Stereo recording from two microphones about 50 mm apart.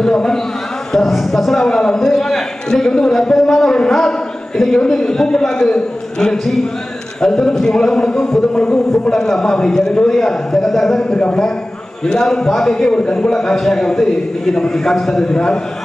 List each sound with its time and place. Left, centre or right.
0.0 s a man's voice: centre
15.3 s a man's voice: centre